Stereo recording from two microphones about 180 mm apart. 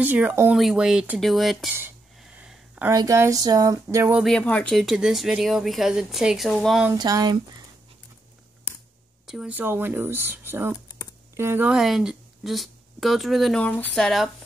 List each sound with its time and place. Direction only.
0.0 s speech: 10° right (ahead or behind)
2.3 s a sound: 5° right (ahead or behind)
2.9 s speech: 20° right (ahead or behind)
4.2 s speech: 5° left (ahead or behind)
6.9 s speech: 20° right (ahead or behind)
9.2 s speech: 5° right (ahead or behind)